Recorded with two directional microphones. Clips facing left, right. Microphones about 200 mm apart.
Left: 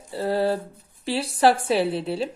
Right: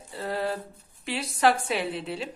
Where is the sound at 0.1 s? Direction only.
30° left (ahead or behind).